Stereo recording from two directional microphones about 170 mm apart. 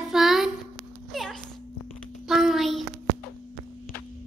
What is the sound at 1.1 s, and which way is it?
Cat, centre (ahead or behind).